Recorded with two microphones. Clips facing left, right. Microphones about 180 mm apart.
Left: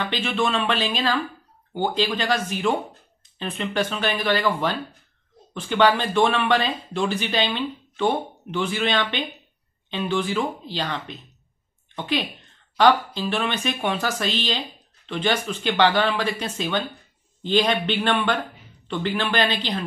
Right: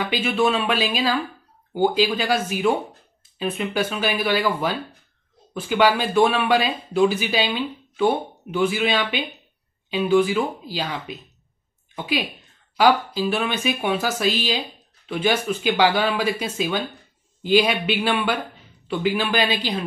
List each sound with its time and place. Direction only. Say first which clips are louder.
0.0 s a woman's voice: right 3 dB; 10° right (ahead or behind)